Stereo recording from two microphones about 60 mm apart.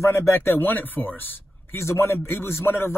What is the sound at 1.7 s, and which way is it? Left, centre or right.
A man's voice, left.